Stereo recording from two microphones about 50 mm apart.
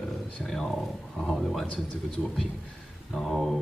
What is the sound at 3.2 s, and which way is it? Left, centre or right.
Speech, centre.